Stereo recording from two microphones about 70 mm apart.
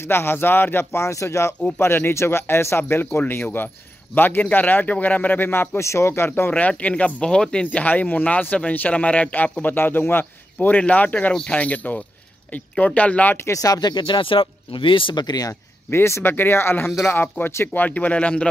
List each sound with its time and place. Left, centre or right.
0.0 s speech: left
6.5 s speech: left
7.8 s speech: left
13.4 s speech: left
15.1 s speech: left
15.9 s speech: left
17.7 s speech: left